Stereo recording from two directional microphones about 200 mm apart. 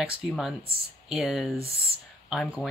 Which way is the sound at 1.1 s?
Centre (ahead or behind).